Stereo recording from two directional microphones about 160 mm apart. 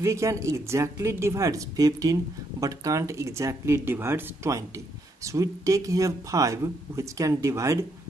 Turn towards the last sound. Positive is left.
turn(degrees=-20)  # may be behind; listen again after turning